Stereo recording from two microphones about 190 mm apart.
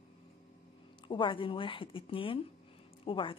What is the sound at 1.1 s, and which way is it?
A woman's voice, 25° left (ahead or behind).